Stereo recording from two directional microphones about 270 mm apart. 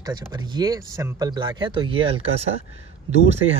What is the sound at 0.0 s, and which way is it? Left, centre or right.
Speech, centre.